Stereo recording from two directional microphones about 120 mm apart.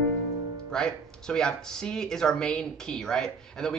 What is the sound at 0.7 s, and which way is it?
Speech, 5° left (ahead or behind).